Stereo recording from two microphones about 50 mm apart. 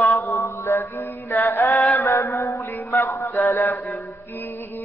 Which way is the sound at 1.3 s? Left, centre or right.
Left.